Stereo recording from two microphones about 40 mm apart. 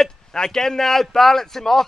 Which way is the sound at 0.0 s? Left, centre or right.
Centre.